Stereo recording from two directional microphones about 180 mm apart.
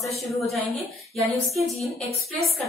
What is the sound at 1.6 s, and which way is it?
Speech, 35° left (ahead or behind).